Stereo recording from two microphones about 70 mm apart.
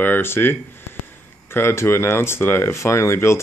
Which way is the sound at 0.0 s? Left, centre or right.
Left.